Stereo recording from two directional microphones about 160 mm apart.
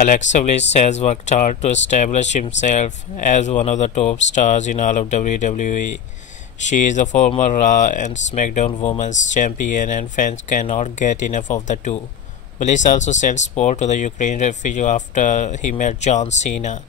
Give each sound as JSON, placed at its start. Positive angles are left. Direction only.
{"t": 0.0, "sound": "speech", "side_deg": 50}